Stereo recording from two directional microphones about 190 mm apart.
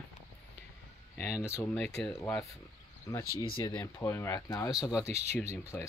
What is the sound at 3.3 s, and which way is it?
Speech, 25° left (ahead or behind).